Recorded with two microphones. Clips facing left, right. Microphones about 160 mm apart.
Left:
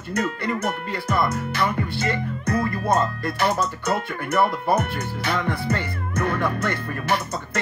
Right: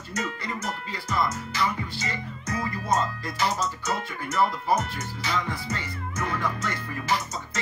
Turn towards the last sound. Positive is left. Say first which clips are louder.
# left 4 dB
turn(degrees=60)  # may be behind; listen again after turning